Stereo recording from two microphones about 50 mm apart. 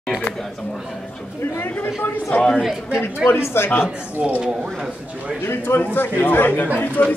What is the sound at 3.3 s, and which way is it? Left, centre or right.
Speech, left.